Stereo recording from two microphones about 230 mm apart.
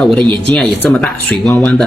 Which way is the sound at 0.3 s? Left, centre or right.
Centre.